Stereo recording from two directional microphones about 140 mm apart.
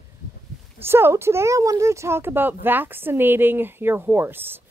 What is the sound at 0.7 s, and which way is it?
Speech, 15° right (ahead or behind).